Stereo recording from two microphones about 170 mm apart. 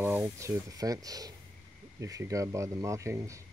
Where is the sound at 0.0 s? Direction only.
15° right (ahead or behind).